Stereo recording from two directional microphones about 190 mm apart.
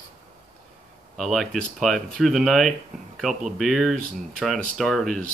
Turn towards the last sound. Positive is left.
turn(degrees=0)  # may be behind; listen again after turning